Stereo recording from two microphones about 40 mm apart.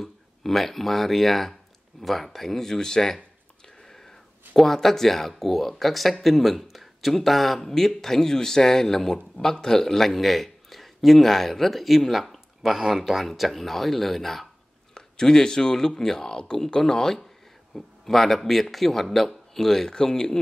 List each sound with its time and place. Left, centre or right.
0.0 s a man's voice: centre